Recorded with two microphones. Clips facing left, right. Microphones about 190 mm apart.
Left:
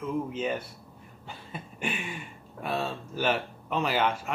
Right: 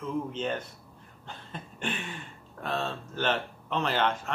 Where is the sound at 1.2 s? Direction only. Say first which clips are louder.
Left 1 dB; 10° left (ahead or behind).